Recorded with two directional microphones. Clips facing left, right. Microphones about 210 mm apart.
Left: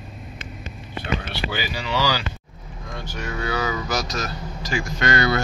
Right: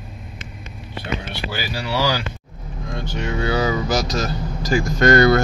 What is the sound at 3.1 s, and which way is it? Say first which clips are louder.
Speech: right 5 dB; 25° right (ahead or behind).